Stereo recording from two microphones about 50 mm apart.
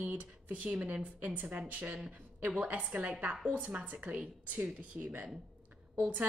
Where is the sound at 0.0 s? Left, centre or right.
Right.